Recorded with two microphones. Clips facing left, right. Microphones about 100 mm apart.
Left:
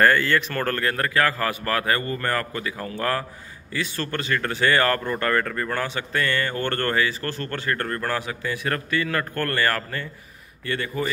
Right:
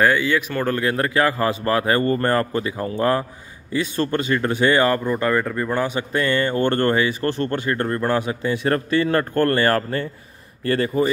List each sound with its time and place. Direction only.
0.0 s speech: 10° right (ahead or behind); by 11.1 s 35° right (ahead or behind)